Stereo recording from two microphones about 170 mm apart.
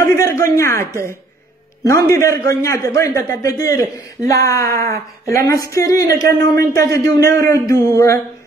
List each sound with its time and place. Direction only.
0.0 s a man's voice: 20° left (ahead or behind)